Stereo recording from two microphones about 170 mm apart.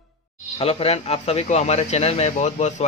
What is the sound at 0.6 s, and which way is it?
A man's voice, 35° left (ahead or behind).